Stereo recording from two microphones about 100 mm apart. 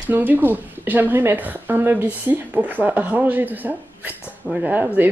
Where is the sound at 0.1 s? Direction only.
20° right (ahead or behind).